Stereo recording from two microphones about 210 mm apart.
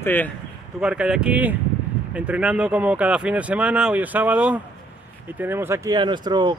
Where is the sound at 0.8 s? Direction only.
5° right (ahead or behind).